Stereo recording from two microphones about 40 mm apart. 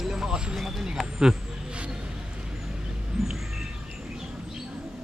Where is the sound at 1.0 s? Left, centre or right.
Centre.